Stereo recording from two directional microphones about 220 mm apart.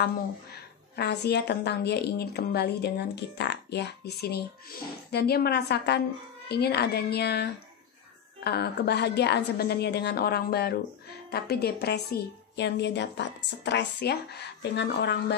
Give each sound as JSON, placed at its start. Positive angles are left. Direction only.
{"t": 0.9, "sound": "a woman's voice", "side_deg": 50}